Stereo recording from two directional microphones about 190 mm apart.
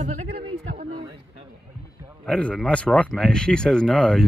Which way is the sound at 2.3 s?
5° left (ahead or behind).